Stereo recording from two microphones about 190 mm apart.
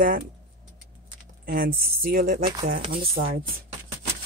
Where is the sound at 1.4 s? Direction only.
50° right (ahead or behind).